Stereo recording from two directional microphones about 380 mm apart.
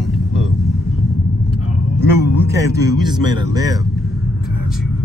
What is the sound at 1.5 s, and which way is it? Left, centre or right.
Vehicle, left.